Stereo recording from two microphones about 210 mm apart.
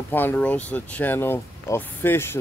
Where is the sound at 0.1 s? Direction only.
10° left (ahead or behind).